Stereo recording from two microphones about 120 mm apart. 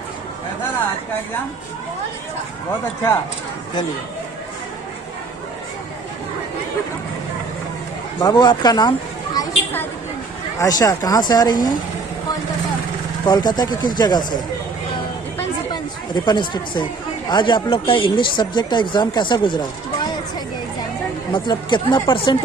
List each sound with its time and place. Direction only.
8.2 s speech: 35° left (ahead or behind)
10.6 s speech: 30° left (ahead or behind)
13.2 s speech: 35° left (ahead or behind)
16.3 s speech: 40° left (ahead or behind)
21.3 s speech: 40° left (ahead or behind)